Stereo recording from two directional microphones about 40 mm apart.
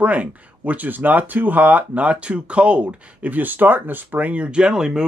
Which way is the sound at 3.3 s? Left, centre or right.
Right.